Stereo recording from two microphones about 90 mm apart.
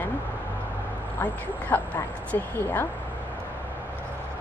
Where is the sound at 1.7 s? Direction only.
25° left (ahead or behind).